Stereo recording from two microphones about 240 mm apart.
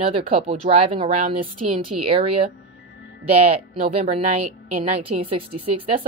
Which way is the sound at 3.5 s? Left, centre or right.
Right.